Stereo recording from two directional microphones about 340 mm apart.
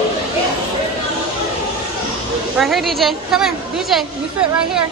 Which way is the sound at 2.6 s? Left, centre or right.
Centre.